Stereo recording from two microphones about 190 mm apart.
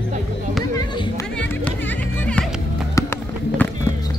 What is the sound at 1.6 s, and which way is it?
Music, 5° left (ahead or behind).